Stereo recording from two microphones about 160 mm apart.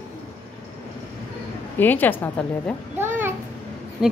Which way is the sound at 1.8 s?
10° left (ahead or behind).